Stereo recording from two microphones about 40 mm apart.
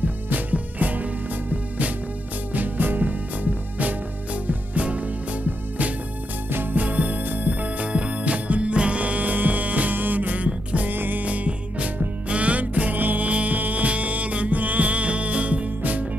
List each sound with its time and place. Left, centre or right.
0.0 s music: right
6.5 s music: right
6.8 s music: right
10.9 s music: right
11.2 s music: right